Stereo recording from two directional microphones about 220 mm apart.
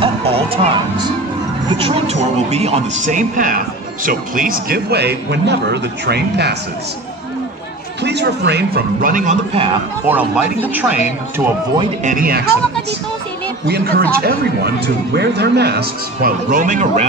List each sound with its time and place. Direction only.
0.0 s a man's voice: 25° right (ahead or behind); by 6.5 s 50° right (ahead or behind)
8.0 s a man's voice: 50° right (ahead or behind); by 9.7 s 30° right (ahead or behind)
10.0 s speech: 5° right (ahead or behind)
11.8 s a man's voice: 35° right (ahead or behind)
13.7 s a man's voice: 45° right (ahead or behind)